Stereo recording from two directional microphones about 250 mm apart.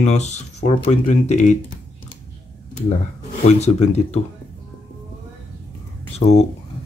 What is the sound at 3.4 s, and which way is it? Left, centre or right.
Speech, left.